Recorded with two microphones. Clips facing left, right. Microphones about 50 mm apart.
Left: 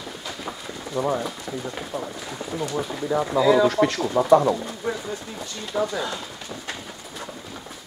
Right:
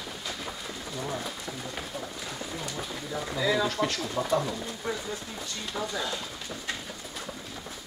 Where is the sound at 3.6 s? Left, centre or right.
Left.